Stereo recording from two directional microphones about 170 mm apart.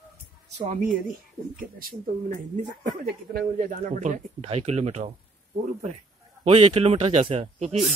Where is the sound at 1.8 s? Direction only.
55° right (ahead or behind); by 5.1 s 40° right (ahead or behind).